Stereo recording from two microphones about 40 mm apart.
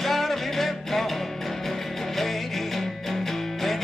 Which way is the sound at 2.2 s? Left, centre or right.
Centre.